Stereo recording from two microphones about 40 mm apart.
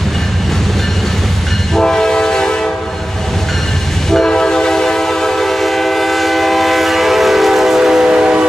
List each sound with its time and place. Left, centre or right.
1.8 s train: centre
4.1 s train: centre; by 8.5 s right